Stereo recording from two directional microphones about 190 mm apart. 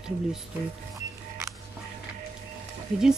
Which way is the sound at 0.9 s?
15° right (ahead or behind).